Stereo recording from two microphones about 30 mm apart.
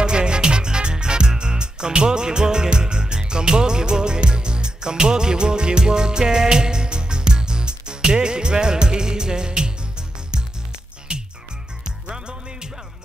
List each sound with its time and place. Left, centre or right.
0.0 s music: right